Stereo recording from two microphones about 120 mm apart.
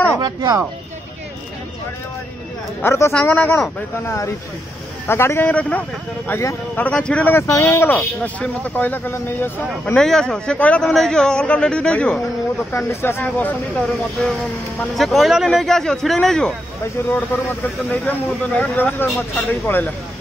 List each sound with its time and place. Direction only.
0.2 s speech: 35° right (ahead or behind)
2.8 s a man's voice: 20° left (ahead or behind)
5.0 s a man's voice: 20° left (ahead or behind)
5.5 s speech: 10° left (ahead or behind)
7.4 s speech: 25° left (ahead or behind)
9.9 s speech: 5° left (ahead or behind)
12.7 s speech: 20° left (ahead or behind)
15.0 s speech: centre (ahead or behind)
18.5 s speech: 10° left (ahead or behind)